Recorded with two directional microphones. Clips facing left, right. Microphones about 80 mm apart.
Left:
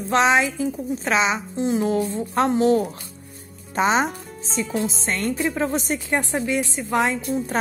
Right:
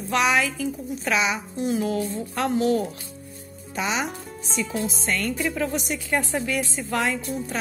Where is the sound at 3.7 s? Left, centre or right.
Left.